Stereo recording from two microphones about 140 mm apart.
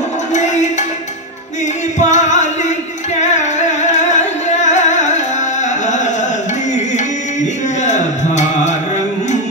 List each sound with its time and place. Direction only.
0.3 s music: 60° left (ahead or behind)
2.0 s singing: 60° left (ahead or behind)
3.2 s music: 55° left (ahead or behind)
7.8 s music: 60° left (ahead or behind)